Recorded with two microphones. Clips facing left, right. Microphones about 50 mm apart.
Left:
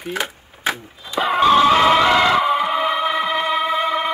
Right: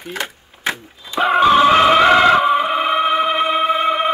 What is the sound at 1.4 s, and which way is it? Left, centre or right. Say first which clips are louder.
Music: right 1 dB; right.